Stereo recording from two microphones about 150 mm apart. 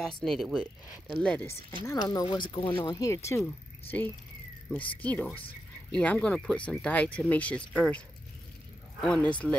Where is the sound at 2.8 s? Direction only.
20° left (ahead or behind).